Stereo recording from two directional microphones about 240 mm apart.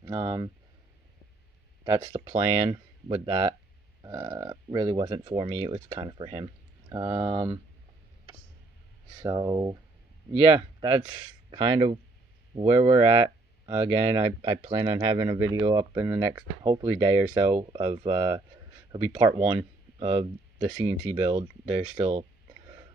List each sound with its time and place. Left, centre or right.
0.0 s speech: centre
1.9 s speech: centre
9.2 s speech: centre